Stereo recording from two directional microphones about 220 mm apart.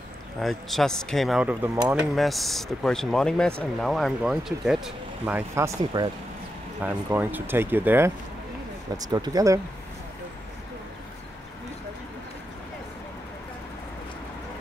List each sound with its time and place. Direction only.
0.4 s speech: centre (ahead or behind); by 9.6 s 15° right (ahead or behind)